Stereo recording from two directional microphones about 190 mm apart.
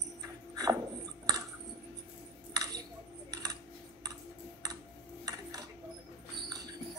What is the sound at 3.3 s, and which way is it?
Typing, 20° right (ahead or behind).